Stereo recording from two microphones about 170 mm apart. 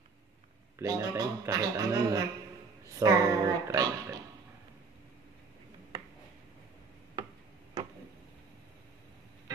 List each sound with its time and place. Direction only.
0.7 s speech: 20° right (ahead or behind)